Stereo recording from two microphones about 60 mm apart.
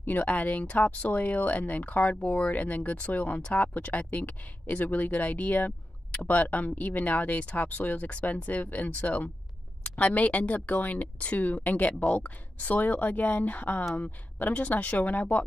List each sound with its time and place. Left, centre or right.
0.0 s speech: left